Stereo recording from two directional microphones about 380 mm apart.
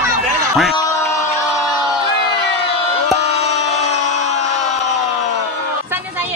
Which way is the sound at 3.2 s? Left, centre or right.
Centre.